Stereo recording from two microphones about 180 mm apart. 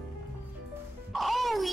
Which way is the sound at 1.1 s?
Centre (ahead or behind).